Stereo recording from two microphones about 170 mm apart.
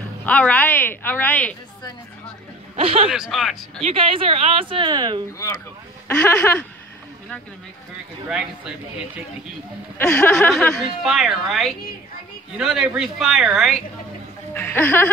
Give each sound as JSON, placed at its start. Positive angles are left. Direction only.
{"t": 0.2, "sound": "a woman's voice", "side_deg": 10}
{"t": 2.7, "sound": "speech", "side_deg": -35}
{"t": 3.1, "sound": "a woman's voice", "side_deg": 0}
{"t": 3.8, "sound": "speech", "side_deg": -30}
{"t": 6.0, "sound": "a woman's voice", "side_deg": 10}
{"t": 8.3, "sound": "a woman's voice", "side_deg": -5}
{"t": 9.9, "sound": "a woman's voice", "side_deg": 5}
{"t": 14.5, "sound": "a woman's voice", "side_deg": 10}